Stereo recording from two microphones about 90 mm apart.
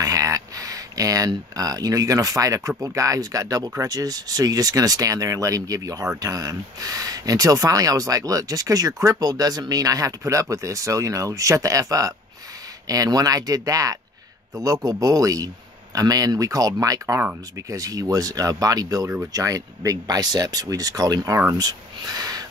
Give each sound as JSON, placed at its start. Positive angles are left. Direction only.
{"t": 0.0, "sound": "speech", "side_deg": -40}